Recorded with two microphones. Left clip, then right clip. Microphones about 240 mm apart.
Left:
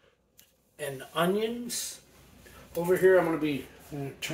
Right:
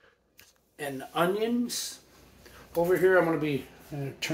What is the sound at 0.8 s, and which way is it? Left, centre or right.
Speech, right.